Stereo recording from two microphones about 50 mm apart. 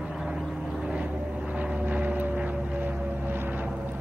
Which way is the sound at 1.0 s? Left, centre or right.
Right.